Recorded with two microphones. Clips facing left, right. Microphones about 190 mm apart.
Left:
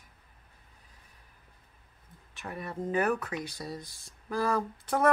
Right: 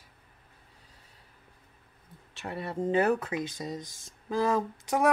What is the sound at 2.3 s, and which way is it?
A woman's voice, 30° right (ahead or behind).